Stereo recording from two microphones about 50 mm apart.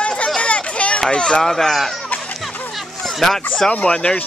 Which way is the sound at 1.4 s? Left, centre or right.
Centre.